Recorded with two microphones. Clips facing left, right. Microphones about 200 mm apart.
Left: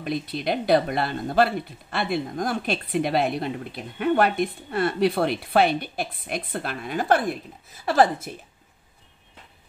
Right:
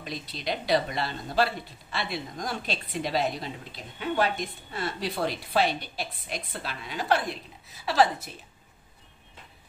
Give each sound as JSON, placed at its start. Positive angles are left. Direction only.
{"t": 0.0, "sound": "a woman's voice", "side_deg": 55}